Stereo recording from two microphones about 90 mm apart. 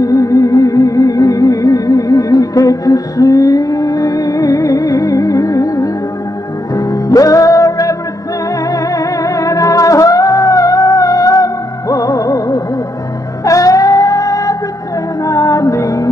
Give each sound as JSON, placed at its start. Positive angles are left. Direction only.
{"t": 0.0, "sound": "music", "side_deg": 40}